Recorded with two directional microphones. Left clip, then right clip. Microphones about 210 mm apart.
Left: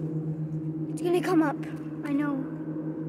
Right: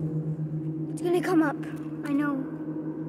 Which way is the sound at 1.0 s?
Centre (ahead or behind).